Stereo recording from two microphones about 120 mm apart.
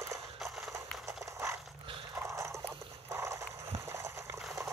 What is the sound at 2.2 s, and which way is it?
Clip-clop, 25° right (ahead or behind).